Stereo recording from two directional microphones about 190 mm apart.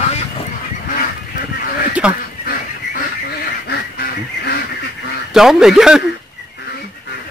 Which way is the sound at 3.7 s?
55° left (ahead or behind).